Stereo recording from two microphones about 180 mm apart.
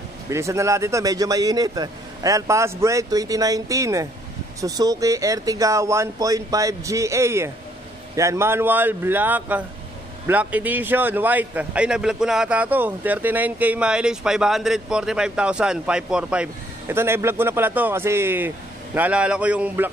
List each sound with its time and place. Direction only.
0.3 s a man's voice: 15° right (ahead or behind)